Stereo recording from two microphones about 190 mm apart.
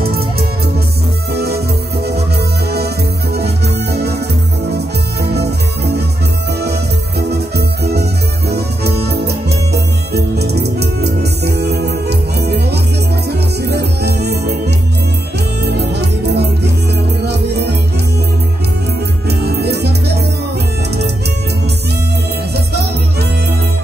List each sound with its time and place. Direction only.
0.0 s music: 55° right (ahead or behind)
3.3 s music: 60° right (ahead or behind)
15.6 s music: 60° right (ahead or behind)
19.2 s music: 55° right (ahead or behind)